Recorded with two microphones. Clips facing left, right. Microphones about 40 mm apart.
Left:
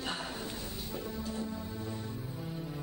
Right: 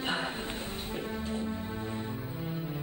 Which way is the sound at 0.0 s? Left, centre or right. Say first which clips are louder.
Right 5 dB; right.